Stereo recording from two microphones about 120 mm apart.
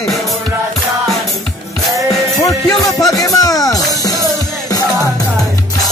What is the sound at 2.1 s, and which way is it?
Music, 30° left (ahead or behind).